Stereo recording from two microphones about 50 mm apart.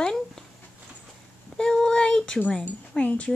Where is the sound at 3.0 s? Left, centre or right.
Left.